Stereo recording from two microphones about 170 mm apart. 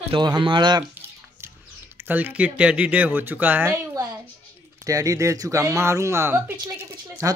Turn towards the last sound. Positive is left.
turn(degrees=-20)  # may be behind; listen again after turning